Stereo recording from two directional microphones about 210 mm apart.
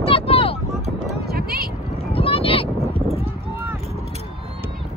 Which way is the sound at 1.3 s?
45° right (ahead or behind).